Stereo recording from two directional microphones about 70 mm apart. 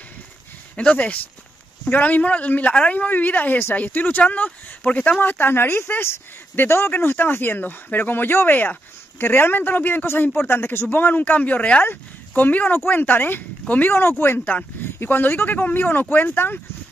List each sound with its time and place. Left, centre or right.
0.7 s speech: centre